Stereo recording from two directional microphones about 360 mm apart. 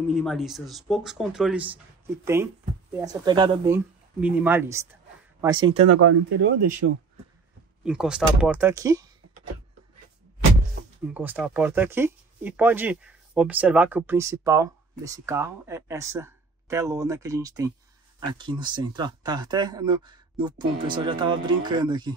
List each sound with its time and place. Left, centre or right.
0.1 s speech: centre
2.9 s speech: centre
5.7 s speech: right
7.8 s speech: centre
11.1 s speech: centre